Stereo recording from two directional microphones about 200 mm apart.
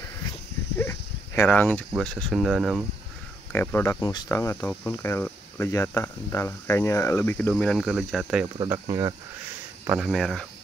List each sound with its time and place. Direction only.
0.7 s a sound: 10° left (ahead or behind)
2.0 s speech: 5° left (ahead or behind)
3.6 s speech: 10° left (ahead or behind)
8.5 s speech: 20° right (ahead or behind)
9.8 s speech: centre (ahead or behind)